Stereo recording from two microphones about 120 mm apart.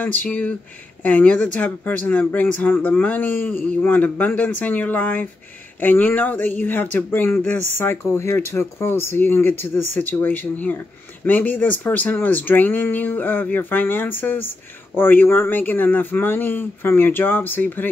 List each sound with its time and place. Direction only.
0.0 s speech: 15° left (ahead or behind)